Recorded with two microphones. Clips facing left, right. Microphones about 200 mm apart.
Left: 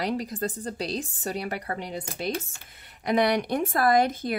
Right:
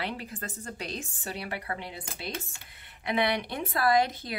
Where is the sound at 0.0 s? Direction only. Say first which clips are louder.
Left 8 dB; 40° left (ahead or behind).